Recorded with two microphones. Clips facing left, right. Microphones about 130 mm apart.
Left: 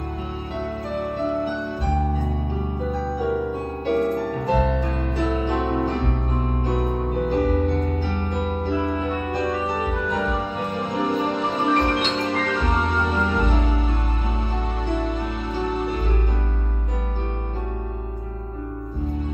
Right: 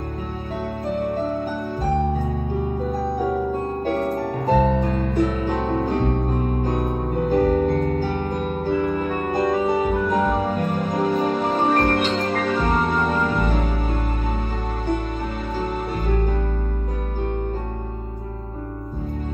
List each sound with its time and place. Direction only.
1.0 s music: 45° right (ahead or behind)
3.8 s music: 45° right (ahead or behind)